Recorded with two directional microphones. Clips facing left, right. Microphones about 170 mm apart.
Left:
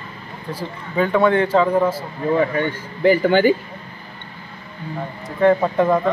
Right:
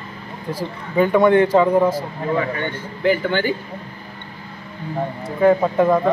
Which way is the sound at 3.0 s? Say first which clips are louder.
Left 4 dB; 40° left (ahead or behind).